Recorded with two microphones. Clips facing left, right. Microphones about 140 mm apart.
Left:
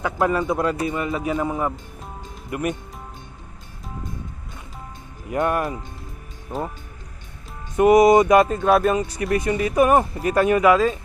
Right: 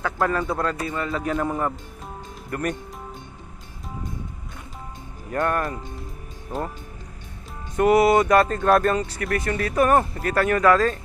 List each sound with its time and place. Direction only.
0.0 s speech: 10° left (ahead or behind)
5.3 s speech: 10° left (ahead or behind)
7.7 s speech: 15° left (ahead or behind)
9.2 s speech: 25° left (ahead or behind)
9.5 s speech: 15° left (ahead or behind)